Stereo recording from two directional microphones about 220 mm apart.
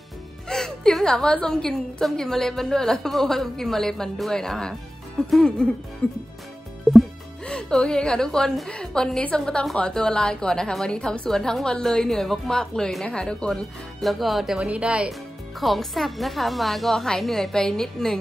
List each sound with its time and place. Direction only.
0.5 s speech: centre (ahead or behind)